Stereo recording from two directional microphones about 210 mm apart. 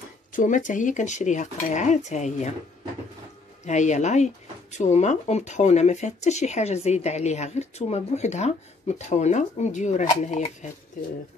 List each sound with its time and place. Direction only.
0.3 s speech: 35° left (ahead or behind)
3.6 s speech: 35° left (ahead or behind)